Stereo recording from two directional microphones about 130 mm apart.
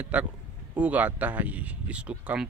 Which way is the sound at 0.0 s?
10° right (ahead or behind).